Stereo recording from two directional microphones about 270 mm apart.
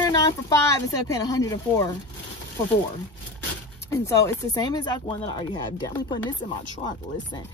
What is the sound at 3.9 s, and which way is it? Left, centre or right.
Speech, centre.